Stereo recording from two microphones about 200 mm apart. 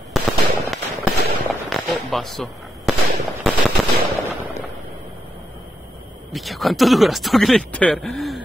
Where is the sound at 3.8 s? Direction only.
Centre (ahead or behind).